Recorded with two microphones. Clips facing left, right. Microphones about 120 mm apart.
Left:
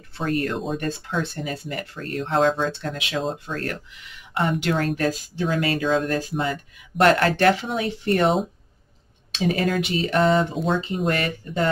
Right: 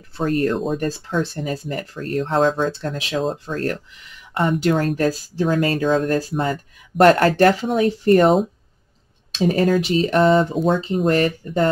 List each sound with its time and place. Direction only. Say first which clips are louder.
0.2 s speech: right 5 dB; 40° right (ahead or behind)
9.4 s speech: right 5 dB; 40° right (ahead or behind)